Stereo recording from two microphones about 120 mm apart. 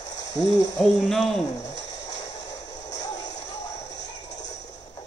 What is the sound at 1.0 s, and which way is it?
Speech, 5° left (ahead or behind).